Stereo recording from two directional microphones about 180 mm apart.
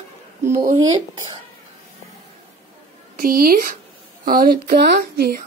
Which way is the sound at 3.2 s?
55° right (ahead or behind).